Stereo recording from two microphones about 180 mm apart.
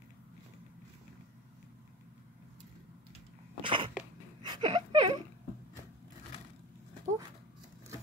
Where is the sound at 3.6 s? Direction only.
30° right (ahead or behind).